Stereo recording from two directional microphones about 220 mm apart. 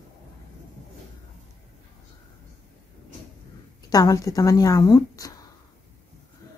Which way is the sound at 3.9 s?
15° left (ahead or behind).